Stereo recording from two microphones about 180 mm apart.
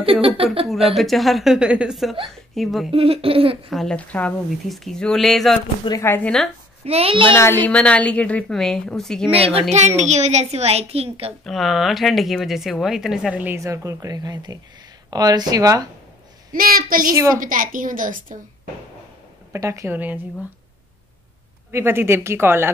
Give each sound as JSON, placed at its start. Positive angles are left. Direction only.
{"t": 0.0, "sound": "a woman's voice", "side_deg": -30}
{"t": 0.8, "sound": "speech", "side_deg": 0}
{"t": 2.9, "sound": "a woman's voice", "side_deg": -30}
{"t": 3.7, "sound": "speech", "side_deg": 5}
{"t": 5.9, "sound": "a woman's voice", "side_deg": 15}
{"t": 6.8, "sound": "a woman's voice", "side_deg": -35}
{"t": 7.3, "sound": "a woman's voice", "side_deg": 10}
{"t": 9.3, "sound": "a woman's voice", "side_deg": -35}
{"t": 11.4, "sound": "speech", "side_deg": 0}
{"t": 16.5, "sound": "a woman's voice", "side_deg": -55}
{"t": 19.5, "sound": "speech", "side_deg": -15}
{"t": 21.7, "sound": "speech", "side_deg": -15}